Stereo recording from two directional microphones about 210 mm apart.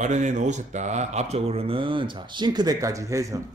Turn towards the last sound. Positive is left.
turn(degrees=-15)  # may be behind; listen again after turning